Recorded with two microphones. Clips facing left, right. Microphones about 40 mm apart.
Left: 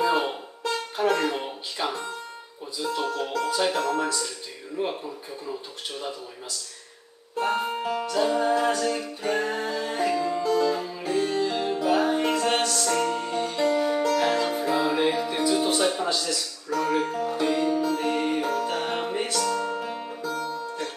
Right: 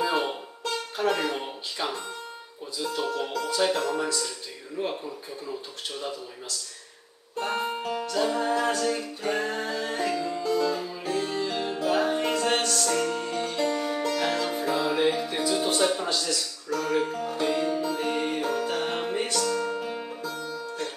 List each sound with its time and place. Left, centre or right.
0.0 s music: centre
2.8 s speech: centre
7.8 s music: centre
20.4 s music: centre